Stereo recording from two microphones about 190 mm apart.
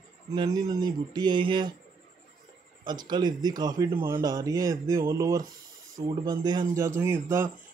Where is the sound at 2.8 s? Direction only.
20° right (ahead or behind).